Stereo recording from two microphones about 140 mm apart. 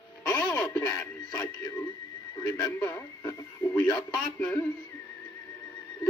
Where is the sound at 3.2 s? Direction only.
20° left (ahead or behind).